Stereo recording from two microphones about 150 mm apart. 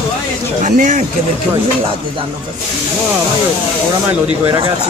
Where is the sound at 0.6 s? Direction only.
55° right (ahead or behind).